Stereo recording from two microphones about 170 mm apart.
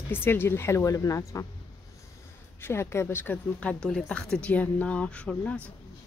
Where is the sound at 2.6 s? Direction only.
15° left (ahead or behind).